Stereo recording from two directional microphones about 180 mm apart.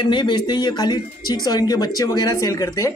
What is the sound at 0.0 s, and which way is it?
Speech, 25° left (ahead or behind).